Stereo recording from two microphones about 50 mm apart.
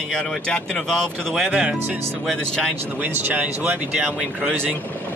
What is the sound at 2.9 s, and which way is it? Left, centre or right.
Speech, right.